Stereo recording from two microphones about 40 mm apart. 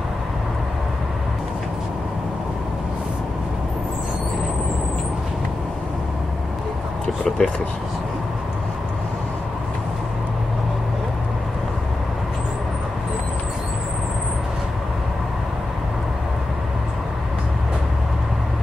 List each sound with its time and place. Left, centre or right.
7.2 s speech: centre